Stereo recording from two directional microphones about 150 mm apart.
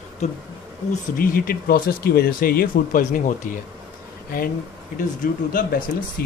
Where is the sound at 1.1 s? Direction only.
75° left (ahead or behind); by 3.5 s 55° left (ahead or behind).